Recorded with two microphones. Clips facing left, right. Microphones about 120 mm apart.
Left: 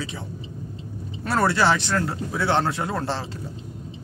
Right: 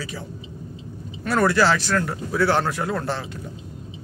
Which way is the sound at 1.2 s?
25° left (ahead or behind).